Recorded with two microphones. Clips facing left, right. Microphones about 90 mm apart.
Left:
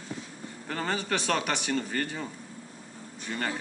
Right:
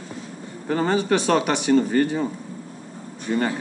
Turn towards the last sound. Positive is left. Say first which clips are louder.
# right 11 dB
turn(degrees=-15)  # may be behind; listen again after turning